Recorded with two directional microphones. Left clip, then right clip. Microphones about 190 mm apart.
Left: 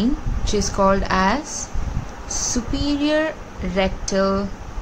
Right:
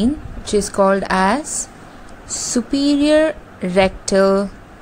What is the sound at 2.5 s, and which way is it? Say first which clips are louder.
Speech: right 10 dB; 35° right (ahead or behind).